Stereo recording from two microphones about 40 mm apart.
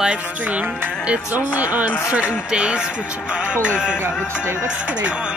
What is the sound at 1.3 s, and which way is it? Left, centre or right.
Speech, right.